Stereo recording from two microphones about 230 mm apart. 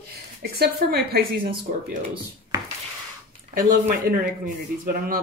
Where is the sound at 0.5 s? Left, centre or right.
Right.